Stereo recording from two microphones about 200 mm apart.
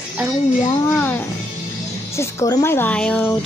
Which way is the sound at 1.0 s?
10° left (ahead or behind).